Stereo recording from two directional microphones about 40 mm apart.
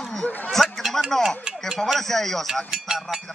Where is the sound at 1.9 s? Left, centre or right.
Centre.